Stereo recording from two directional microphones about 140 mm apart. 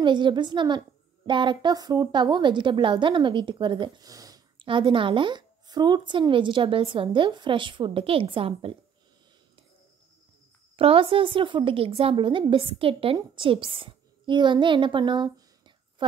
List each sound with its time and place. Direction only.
0.0 s a woman's voice: 35° right (ahead or behind)
4.6 s a woman's voice: 35° right (ahead or behind)
10.8 s a woman's voice: 40° right (ahead or behind)